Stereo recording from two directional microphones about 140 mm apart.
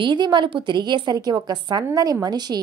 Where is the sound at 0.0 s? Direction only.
35° right (ahead or behind).